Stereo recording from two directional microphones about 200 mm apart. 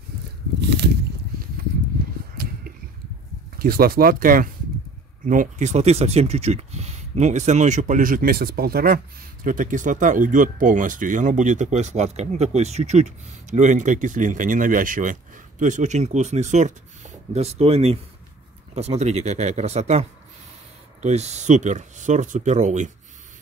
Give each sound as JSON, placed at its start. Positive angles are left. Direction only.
{"t": 3.5, "sound": "speech", "side_deg": -50}